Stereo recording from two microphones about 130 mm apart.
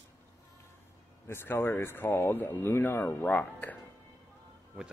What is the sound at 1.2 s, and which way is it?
Speech, 20° left (ahead or behind).